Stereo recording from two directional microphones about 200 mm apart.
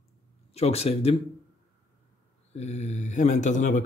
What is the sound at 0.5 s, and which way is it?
Speech, 30° left (ahead or behind).